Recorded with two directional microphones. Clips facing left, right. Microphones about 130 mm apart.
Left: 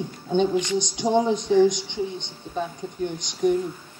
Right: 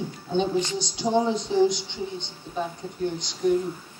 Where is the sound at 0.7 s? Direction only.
20° left (ahead or behind).